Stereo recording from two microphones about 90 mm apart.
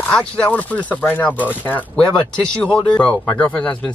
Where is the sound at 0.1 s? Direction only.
15° left (ahead or behind).